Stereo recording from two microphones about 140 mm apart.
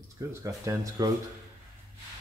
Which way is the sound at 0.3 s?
20° right (ahead or behind).